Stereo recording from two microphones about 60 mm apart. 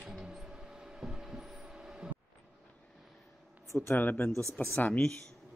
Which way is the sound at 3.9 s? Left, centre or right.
Left.